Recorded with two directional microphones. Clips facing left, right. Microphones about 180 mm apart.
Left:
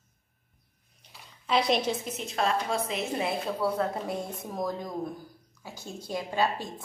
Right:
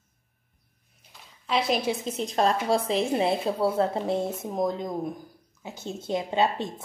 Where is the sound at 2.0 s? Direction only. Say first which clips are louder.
Right 5 dB; 35° right (ahead or behind).